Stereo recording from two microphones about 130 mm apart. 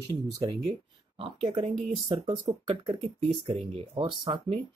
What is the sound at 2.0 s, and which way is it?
Speech, 40° right (ahead or behind).